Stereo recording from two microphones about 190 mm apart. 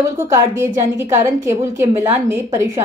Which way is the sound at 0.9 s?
15° right (ahead or behind).